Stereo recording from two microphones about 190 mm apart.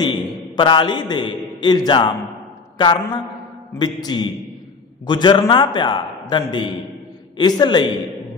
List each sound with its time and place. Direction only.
0.0 s a man's voice: 25° left (ahead or behind)